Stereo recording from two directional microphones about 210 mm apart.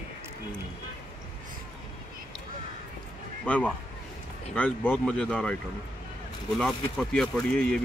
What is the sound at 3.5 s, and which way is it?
Speech, 5° left (ahead or behind).